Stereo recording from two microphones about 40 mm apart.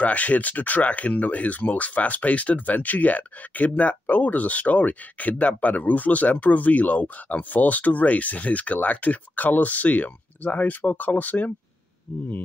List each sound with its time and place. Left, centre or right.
0.0 s speech: left